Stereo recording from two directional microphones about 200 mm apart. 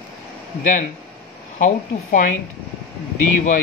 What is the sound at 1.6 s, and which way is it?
Speech, 40° left (ahead or behind).